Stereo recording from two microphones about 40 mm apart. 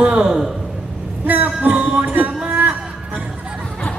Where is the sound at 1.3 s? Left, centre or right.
Right.